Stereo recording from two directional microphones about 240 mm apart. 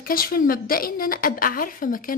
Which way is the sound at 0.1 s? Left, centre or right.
Left.